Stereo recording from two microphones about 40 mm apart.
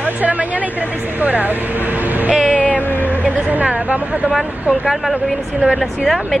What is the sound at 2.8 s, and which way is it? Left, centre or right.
Music, left.